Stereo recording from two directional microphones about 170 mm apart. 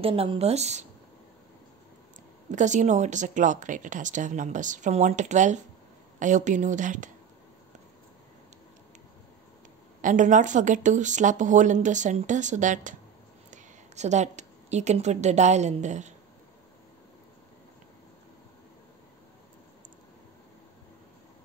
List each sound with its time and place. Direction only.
0.0 s a woman's voice: 35° right (ahead or behind)
2.5 s speech: 45° right (ahead or behind)
10.0 s a woman's voice: 50° right (ahead or behind)